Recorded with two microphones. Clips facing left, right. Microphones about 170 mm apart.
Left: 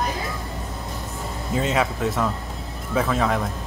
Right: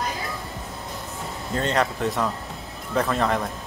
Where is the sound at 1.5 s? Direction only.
5° left (ahead or behind).